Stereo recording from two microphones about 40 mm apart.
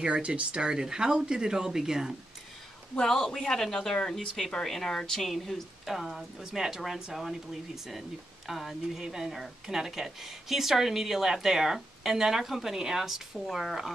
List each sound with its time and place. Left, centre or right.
0.0 s speech: right
3.0 s a man's voice: centre
5.3 s a woman's voice: centre